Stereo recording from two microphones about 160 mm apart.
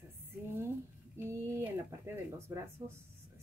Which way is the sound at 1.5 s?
15° right (ahead or behind).